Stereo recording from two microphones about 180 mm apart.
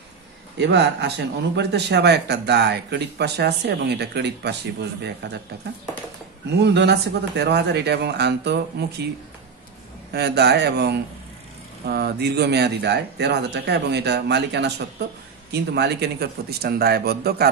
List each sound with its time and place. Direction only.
0.6 s a man's voice: 70° right (ahead or behind)
6.6 s a man's voice: 70° right (ahead or behind)
10.1 s a man's voice: 65° right (ahead or behind)